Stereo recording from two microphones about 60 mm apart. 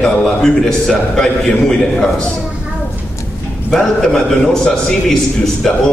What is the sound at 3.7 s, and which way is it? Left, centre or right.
A man's voice, centre.